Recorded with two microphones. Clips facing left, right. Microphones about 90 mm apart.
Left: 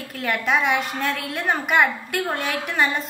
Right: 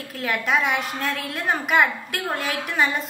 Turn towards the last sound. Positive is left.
turn(degrees=0)  # may be behind; listen again after turning